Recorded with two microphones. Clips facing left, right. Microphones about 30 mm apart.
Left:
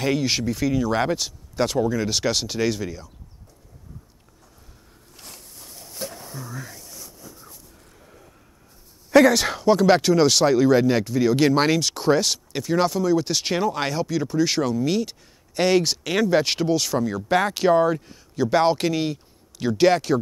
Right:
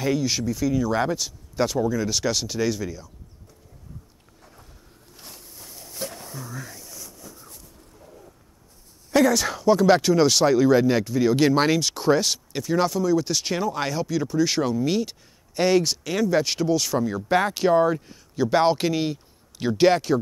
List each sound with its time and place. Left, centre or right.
0.0 s speech: left
5.4 s a sound: centre
9.1 s speech: left; by 15.1 s centre
15.5 s speech: centre
16.7 s speech: centre